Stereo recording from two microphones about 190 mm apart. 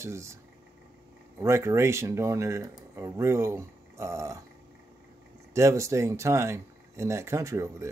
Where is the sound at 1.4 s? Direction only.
15° right (ahead or behind).